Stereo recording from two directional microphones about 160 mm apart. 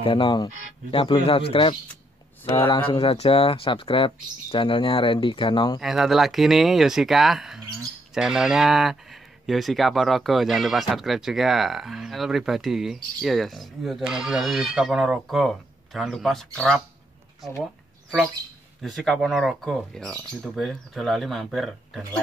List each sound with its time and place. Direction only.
0.0 s speech: 30° left (ahead or behind)
2.9 s speech: 35° left (ahead or behind)
5.8 s speech: centre (ahead or behind)
18.8 s speech: centre (ahead or behind)